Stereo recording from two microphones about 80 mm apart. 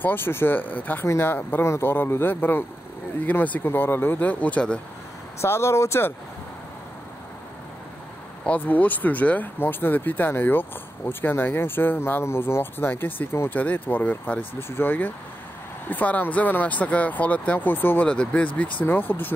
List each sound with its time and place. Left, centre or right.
0.0 s speech: left
5.4 s speech: left
8.5 s speech: left
18.0 s speech: centre
18.9 s speech: left